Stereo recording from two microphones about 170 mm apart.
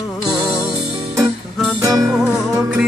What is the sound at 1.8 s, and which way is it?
Music, 20° right (ahead or behind).